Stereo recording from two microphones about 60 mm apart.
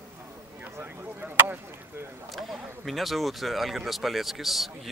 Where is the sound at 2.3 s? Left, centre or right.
Centre.